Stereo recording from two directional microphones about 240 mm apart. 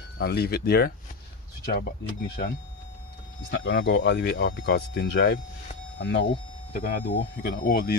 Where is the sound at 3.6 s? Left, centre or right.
Left.